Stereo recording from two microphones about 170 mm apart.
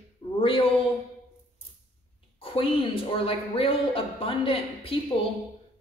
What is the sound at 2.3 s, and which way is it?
Speech, 30° left (ahead or behind).